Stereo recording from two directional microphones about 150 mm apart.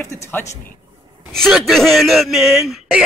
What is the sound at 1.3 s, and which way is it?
Speech, centre (ahead or behind).